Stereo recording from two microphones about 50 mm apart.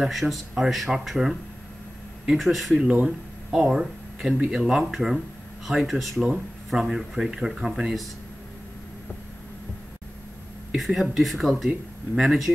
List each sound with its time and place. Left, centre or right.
0.1 s speech: centre
2.8 s speech: centre
10.9 s speech: centre